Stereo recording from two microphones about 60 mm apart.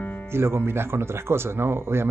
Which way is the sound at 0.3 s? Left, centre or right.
Right.